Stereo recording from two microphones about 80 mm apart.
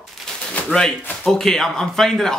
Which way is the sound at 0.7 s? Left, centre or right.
Centre.